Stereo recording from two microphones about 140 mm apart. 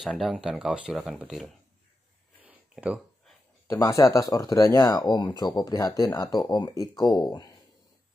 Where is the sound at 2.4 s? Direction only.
10° right (ahead or behind).